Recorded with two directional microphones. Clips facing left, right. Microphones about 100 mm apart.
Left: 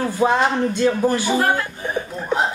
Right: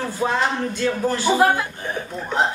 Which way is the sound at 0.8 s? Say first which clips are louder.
Left 4 dB; 30° left (ahead or behind).